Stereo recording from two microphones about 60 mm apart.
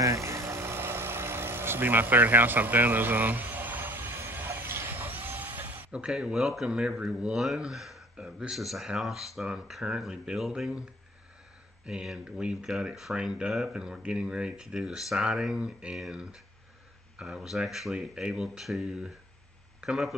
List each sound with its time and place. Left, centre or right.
0.0 s vehicle: right
5.9 s speech: centre
6.3 s speech: centre
11.8 s speech: centre
12.7 s speech: centre
13.1 s speech: centre